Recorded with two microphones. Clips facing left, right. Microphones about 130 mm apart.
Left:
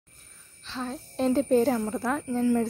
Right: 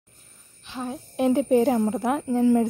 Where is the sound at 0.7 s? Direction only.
15° right (ahead or behind).